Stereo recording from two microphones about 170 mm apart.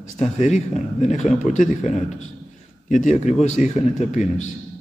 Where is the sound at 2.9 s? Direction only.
45° left (ahead or behind).